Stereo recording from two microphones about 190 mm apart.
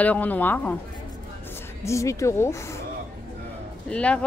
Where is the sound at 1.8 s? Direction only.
15° left (ahead or behind).